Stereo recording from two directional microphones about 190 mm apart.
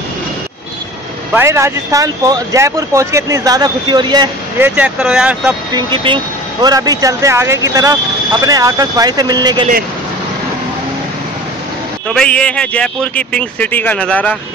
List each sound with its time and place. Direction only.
1.3 s speech: 15° right (ahead or behind)
4.6 s speech: 10° right (ahead or behind)
5.7 s speech: 25° right (ahead or behind)
12.1 s speech: 5° left (ahead or behind)